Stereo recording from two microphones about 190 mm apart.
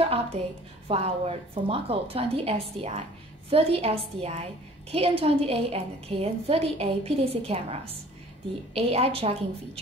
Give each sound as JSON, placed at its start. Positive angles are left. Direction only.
{"t": 0.0, "sound": "a woman's voice", "side_deg": -30}